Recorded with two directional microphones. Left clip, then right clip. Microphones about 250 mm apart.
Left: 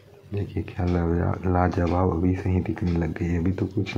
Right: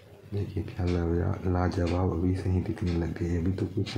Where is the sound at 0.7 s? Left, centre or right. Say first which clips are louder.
Left 4 dB; centre.